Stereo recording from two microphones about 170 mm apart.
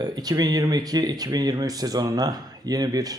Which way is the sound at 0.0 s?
25° right (ahead or behind).